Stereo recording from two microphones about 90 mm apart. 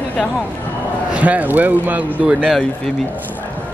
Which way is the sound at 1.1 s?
15° right (ahead or behind).